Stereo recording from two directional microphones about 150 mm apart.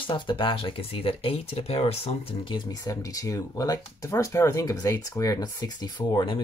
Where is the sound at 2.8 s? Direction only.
20° left (ahead or behind).